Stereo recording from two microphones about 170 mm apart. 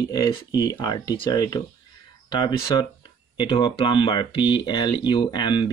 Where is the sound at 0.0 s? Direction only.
20° left (ahead or behind).